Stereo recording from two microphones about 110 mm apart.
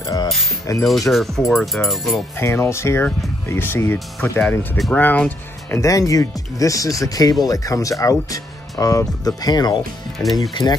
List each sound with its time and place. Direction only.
0.0 s music: 35° left (ahead or behind)
0.7 s speech: 30° left (ahead or behind)
1.1 s speech: centre (ahead or behind)
2.3 s speech: 25° left (ahead or behind)
5.8 s speech: 30° left (ahead or behind)
10.5 s speech: 40° left (ahead or behind)